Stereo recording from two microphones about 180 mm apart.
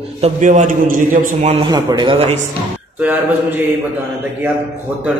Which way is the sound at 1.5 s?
25° right (ahead or behind).